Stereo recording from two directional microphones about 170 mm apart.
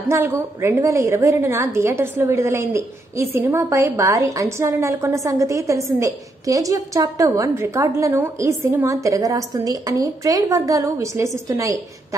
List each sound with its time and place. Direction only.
0.1 s a woman's voice: 15° right (ahead or behind)